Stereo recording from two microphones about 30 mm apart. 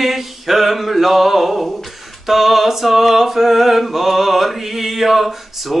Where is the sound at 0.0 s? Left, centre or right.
Centre.